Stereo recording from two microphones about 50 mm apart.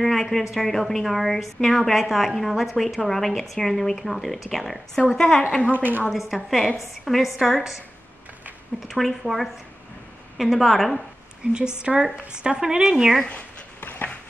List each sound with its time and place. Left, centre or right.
0.0 s a woman's voice: centre
5.7 s a woman's voice: right
6.0 s a woman's voice: centre
8.8 s a woman's voice: centre
11.4 s a woman's voice: right; by 13.2 s centre
13.7 s a sound: left